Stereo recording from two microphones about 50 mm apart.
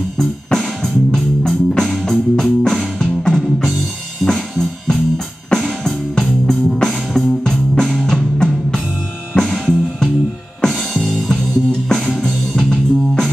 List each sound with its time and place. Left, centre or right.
0.2 s music: centre
7.7 s music: centre